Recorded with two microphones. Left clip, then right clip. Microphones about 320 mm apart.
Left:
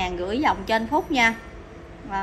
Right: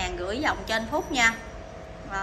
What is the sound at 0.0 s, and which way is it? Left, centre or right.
A woman's voice, centre.